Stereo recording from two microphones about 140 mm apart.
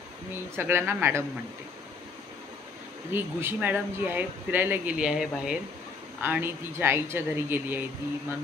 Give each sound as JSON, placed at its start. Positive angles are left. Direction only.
{"t": 0.6, "sound": "speech", "side_deg": -15}
{"t": 3.1, "sound": "speech", "side_deg": -15}
{"t": 6.2, "sound": "speech", "side_deg": -15}